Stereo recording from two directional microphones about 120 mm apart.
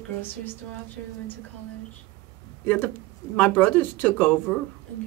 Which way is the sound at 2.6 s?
15° left (ahead or behind).